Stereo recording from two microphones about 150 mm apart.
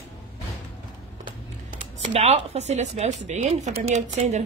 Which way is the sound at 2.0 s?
45° right (ahead or behind).